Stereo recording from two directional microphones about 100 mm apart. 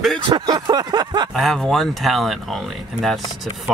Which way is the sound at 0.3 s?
45° right (ahead or behind).